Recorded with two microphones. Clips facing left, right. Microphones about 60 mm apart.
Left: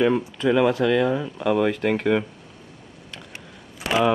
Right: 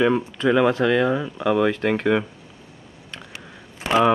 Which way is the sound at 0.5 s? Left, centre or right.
Centre.